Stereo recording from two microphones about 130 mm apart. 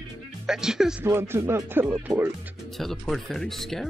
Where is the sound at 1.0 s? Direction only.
20° right (ahead or behind).